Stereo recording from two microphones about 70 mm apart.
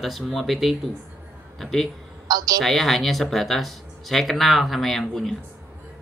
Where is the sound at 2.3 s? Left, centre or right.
Right.